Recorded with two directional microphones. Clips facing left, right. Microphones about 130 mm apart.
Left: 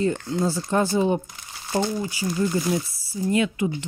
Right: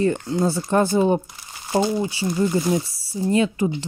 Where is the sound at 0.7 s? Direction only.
50° right (ahead or behind).